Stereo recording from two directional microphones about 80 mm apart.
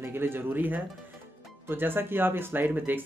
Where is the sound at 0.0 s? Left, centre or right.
Right.